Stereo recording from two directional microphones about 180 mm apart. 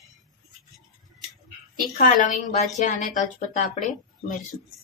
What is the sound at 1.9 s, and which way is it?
Speech, 45° left (ahead or behind).